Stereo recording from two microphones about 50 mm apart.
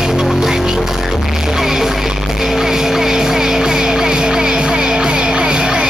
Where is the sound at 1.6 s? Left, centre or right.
Centre.